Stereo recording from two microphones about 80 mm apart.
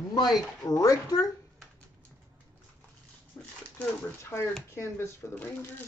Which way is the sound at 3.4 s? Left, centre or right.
Left.